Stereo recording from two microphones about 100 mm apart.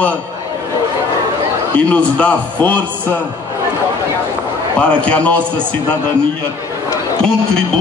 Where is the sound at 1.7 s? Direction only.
15° left (ahead or behind).